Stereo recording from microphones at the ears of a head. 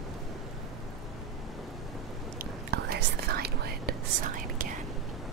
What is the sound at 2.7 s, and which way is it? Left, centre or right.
Whispering, right.